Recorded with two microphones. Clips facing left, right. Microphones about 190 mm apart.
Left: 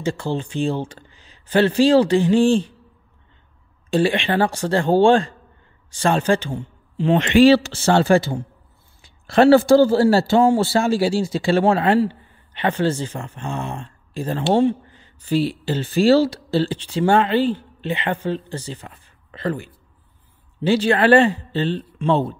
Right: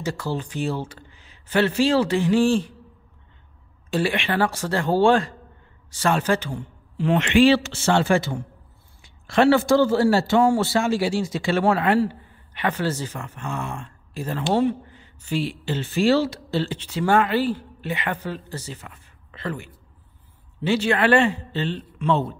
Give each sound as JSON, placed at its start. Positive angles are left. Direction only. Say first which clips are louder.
{"t": 0.0, "sound": "a man's voice", "louder": "left 4 dB", "side_deg": 25}
{"t": 3.9, "sound": "a man's voice", "louder": "left 5 dB", "side_deg": 30}
{"t": 7.2, "sound": "a man's voice", "louder": "left 4 dB", "side_deg": 40}